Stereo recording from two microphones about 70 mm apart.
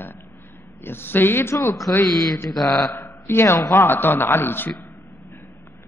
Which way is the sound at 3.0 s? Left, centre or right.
Left.